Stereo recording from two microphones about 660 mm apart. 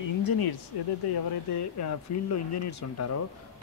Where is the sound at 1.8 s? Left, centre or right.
Left.